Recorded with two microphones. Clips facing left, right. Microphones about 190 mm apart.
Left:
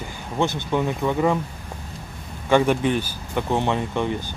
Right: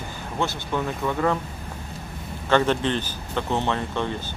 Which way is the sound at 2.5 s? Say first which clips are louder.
Left 3 dB; 10° left (ahead or behind).